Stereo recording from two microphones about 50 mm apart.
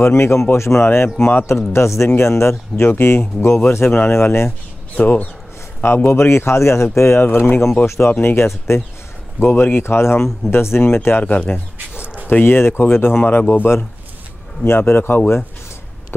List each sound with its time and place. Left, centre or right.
0.0 s speech: left
0.8 s speech: left
2.7 s speech: left
6.0 s speech: left
7.0 s speech: left
9.4 s speech: left
11.3 s speech: left
12.3 s speech: left